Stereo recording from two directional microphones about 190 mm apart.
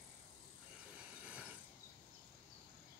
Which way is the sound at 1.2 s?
5° right (ahead or behind).